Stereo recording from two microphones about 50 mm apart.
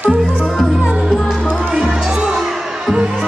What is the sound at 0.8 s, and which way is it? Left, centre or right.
Music, centre.